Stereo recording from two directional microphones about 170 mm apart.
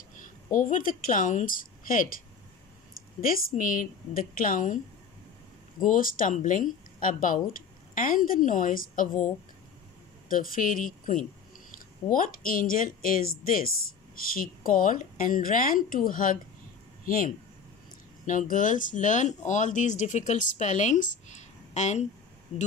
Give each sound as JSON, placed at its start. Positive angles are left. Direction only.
{"t": 0.2, "sound": "a woman's voice", "side_deg": 55}
{"t": 3.2, "sound": "a woman's voice", "side_deg": 55}
{"t": 5.8, "sound": "speech", "side_deg": 55}
{"t": 10.3, "sound": "a woman's voice", "side_deg": 55}